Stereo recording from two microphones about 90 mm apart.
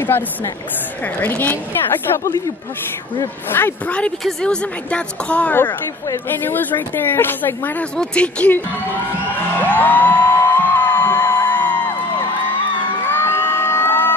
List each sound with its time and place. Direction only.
1.2 s a woman's voice: 20° left (ahead or behind)
3.4 s a woman's voice: 25° left (ahead or behind)
3.8 s a woman's voice: 15° left (ahead or behind)
8.0 s speech: 10° left (ahead or behind)
9.3 s music: 20° left (ahead or behind)
13.0 s music: 25° left (ahead or behind)